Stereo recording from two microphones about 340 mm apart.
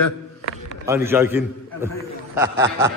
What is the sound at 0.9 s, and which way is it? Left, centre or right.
A man's voice, centre.